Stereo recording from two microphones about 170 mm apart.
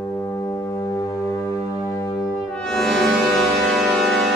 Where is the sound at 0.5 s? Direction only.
20° left (ahead or behind).